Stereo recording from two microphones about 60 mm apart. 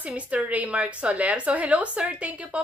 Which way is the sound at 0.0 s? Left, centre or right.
Right.